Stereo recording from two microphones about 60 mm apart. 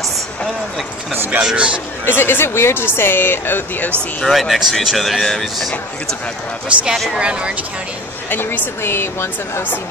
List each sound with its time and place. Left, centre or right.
1.1 s speech: right
1.4 s a woman's voice: centre
2.0 s speech: left
4.2 s speech: centre
7.2 s a woman's voice: centre
8.3 s speech: left